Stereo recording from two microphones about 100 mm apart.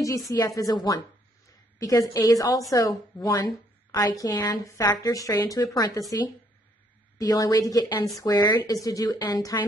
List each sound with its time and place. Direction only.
0.3 s a woman's voice: 35° left (ahead or behind)